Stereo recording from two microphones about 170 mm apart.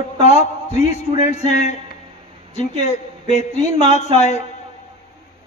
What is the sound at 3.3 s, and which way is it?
A man's voice, 40° left (ahead or behind).